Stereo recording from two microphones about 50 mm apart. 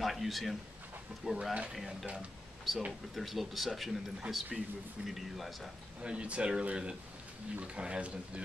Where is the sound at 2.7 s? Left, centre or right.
Centre.